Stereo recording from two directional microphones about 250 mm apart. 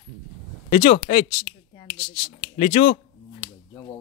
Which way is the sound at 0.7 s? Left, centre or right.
Left.